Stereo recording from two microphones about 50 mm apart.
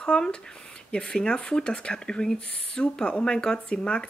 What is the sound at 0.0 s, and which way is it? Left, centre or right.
Speech, centre.